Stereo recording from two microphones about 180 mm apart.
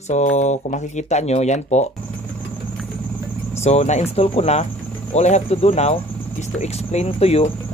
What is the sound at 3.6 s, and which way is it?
Speech, 35° left (ahead or behind).